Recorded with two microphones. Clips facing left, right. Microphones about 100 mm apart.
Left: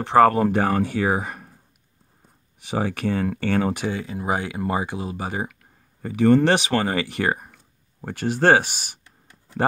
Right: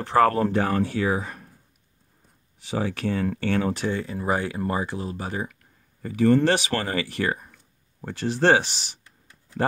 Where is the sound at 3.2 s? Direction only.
10° left (ahead or behind).